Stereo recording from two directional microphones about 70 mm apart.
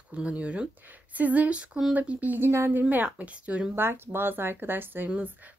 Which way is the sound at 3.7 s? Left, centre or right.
Right.